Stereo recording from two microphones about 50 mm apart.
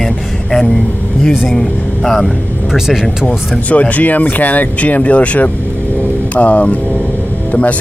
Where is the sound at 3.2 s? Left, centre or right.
Left.